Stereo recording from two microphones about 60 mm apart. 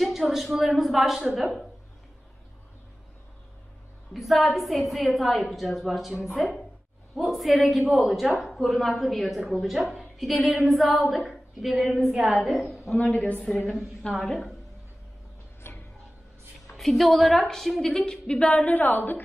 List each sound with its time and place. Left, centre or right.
0.0 s a woman's voice: centre
4.1 s a woman's voice: centre
12.9 s a woman's voice: left
15.7 s a sound: left
16.7 s a woman's voice: centre; by 19.2 s left